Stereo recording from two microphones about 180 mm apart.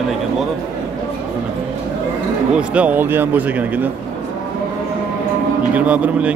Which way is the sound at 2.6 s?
5° right (ahead or behind).